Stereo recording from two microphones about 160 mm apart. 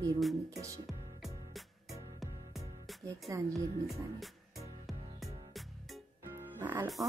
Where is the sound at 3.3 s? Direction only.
20° right (ahead or behind).